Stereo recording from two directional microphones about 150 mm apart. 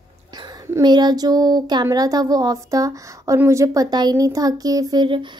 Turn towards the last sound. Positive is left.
turn(degrees=-30)  # may be behind; listen again after turning